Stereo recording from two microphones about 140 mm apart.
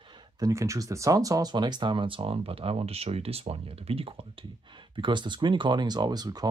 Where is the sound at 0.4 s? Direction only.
20° right (ahead or behind).